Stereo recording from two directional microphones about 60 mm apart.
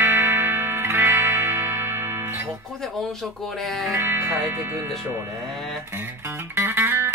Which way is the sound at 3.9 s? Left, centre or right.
Right.